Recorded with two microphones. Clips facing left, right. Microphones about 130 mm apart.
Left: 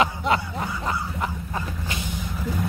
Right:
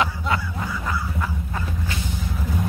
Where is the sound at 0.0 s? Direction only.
20° left (ahead or behind).